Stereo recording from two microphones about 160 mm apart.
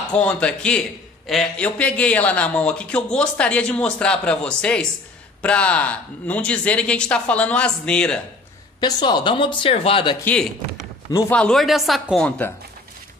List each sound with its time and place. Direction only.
0.1 s a man's voice: 5° left (ahead or behind)
8.8 s speech: 25° left (ahead or behind)
11.2 s speech: 5° left (ahead or behind)
12.3 s a man's voice: 15° left (ahead or behind)